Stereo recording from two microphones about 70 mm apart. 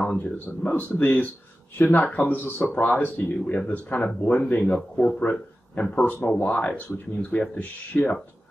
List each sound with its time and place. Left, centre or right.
0.2 s speech: left